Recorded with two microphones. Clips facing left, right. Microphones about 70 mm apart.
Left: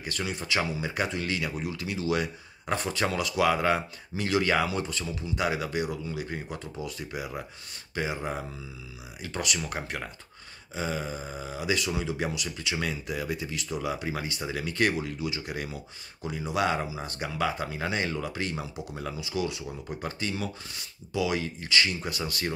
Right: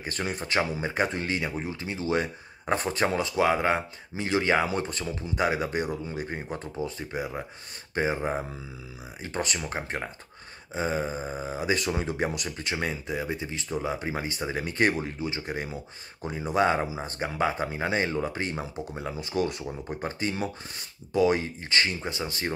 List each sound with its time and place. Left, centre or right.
0.0 s speech: right
4.6 s speech: right